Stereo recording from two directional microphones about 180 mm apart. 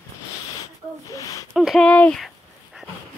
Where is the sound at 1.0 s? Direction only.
20° left (ahead or behind).